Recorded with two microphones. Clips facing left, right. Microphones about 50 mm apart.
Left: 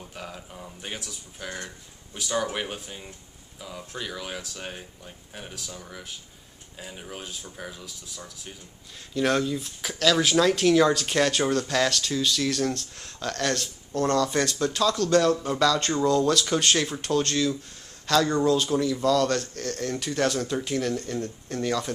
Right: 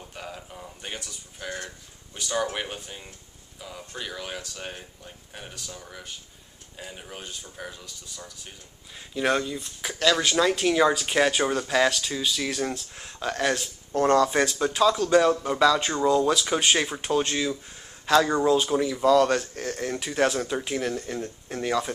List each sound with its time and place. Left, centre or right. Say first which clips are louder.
0.1 s a sound: right 2 dB; centre
2.1 s speech: even; centre
8.9 s speech: left 1 dB; centre
13.9 s speech: right 3 dB; right